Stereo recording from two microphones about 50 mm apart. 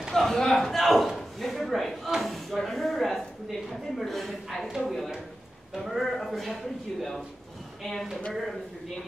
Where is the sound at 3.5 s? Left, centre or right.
Centre.